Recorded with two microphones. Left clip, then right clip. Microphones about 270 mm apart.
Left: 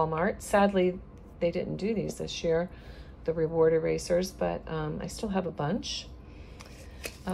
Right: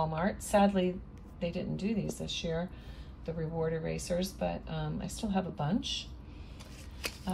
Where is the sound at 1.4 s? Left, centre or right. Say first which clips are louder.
Left 7 dB; centre.